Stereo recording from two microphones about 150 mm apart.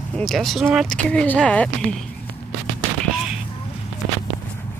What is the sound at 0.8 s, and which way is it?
Speech, 5° left (ahead or behind).